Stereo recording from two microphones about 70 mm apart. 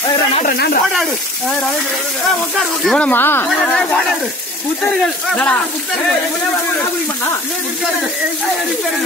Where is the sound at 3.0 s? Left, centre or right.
Left.